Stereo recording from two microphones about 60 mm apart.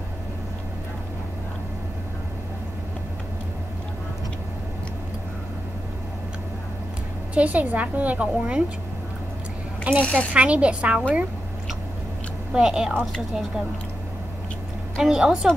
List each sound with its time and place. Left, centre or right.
7.3 s a woman's voice: right
9.9 s speech: centre
10.3 s a woman's voice: right
12.5 s speech: centre
15.0 s speech: centre